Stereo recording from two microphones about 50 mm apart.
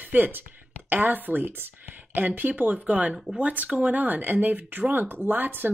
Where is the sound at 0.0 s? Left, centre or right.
Right.